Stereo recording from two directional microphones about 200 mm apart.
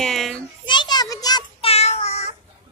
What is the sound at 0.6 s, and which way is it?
Child singing, 20° left (ahead or behind).